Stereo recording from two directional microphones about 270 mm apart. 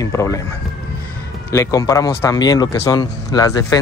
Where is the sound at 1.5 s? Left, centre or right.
Centre.